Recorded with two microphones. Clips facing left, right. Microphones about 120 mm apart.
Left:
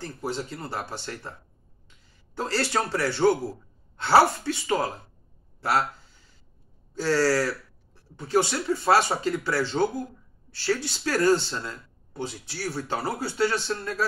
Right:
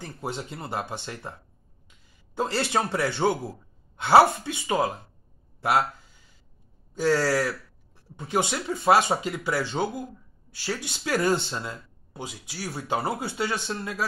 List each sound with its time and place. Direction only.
0.0 s speech: 20° right (ahead or behind)
2.3 s speech: 20° right (ahead or behind)
6.9 s speech: 15° right (ahead or behind)